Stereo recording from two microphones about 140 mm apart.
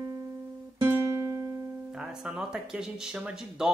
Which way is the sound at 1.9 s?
5° right (ahead or behind).